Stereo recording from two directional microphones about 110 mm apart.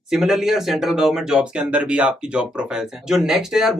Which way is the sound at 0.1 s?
Centre (ahead or behind).